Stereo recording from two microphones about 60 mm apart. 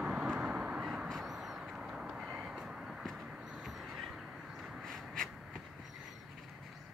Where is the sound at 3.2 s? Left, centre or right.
Centre.